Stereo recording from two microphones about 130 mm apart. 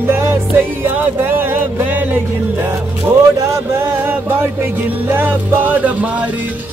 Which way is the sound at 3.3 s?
20° right (ahead or behind).